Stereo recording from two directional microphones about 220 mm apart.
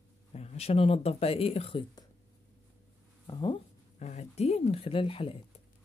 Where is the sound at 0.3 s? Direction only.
30° left (ahead or behind).